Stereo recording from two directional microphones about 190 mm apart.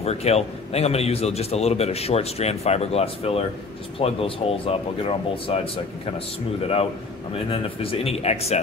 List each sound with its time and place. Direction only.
0.0 s a man's voice: 35° left (ahead or behind)
7.3 s a man's voice: 30° left (ahead or behind)